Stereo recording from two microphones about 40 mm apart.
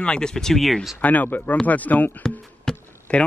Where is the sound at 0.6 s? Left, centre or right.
Centre.